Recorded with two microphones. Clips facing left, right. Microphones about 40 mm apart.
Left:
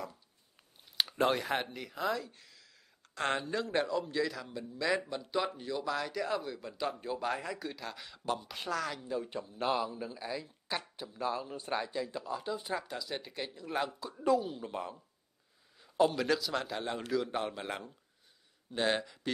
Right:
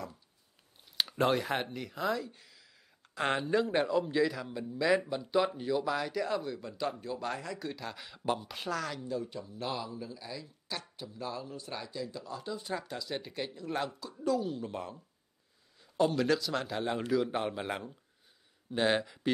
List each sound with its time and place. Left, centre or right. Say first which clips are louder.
0.9 s a man's voice: right 1 dB; centre
7.0 s a man's voice: left 2 dB; centre
9.0 s speech: right 1 dB; centre
9.3 s speech: left 4 dB; left
12.3 s speech: left 2 dB; centre
12.7 s a man's voice: even; centre
13.9 s speech: left 2 dB; left
14.4 s a man's voice: right 2 dB; centre